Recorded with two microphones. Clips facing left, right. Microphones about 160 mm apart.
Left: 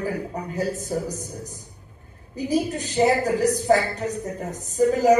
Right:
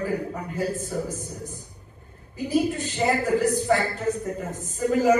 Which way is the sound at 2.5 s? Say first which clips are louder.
Even; 40° left (ahead or behind).